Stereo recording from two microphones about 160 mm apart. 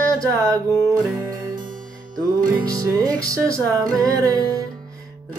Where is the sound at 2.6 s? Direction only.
20° right (ahead or behind).